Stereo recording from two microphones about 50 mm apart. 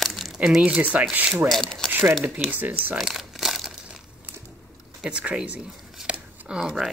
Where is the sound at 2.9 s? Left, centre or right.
Centre.